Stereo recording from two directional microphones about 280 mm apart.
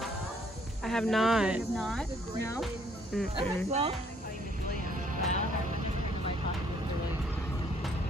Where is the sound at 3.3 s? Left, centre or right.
Right.